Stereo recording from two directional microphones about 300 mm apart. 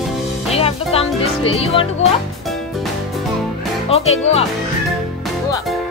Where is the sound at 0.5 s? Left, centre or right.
Centre.